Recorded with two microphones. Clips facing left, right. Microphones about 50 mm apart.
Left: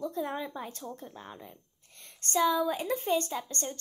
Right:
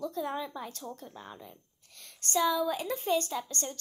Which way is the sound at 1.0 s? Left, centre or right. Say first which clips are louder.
Left 1 dB; centre.